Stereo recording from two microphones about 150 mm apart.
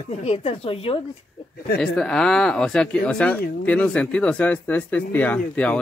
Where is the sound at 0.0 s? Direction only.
45° left (ahead or behind).